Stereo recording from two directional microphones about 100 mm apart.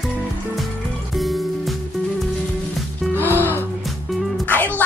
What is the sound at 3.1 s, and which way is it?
Music, 20° right (ahead or behind).